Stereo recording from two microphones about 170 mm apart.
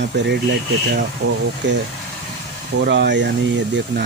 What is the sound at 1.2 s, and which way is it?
Speech, 75° right (ahead or behind).